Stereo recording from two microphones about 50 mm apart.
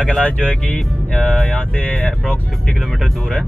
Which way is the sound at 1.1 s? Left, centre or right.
Centre.